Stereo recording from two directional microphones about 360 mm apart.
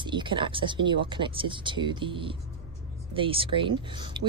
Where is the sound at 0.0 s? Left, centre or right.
Centre.